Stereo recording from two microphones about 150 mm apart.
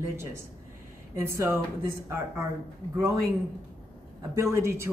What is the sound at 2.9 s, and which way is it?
Speech, 20° right (ahead or behind).